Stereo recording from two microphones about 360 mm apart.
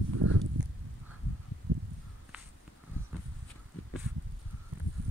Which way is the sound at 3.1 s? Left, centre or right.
Centre.